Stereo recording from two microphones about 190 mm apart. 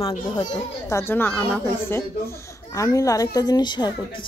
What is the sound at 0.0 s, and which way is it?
A child's voice, 25° left (ahead or behind).